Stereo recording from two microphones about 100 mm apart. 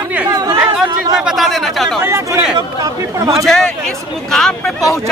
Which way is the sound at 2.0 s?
25° right (ahead or behind).